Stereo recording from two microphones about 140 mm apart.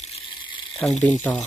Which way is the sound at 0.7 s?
5° left (ahead or behind).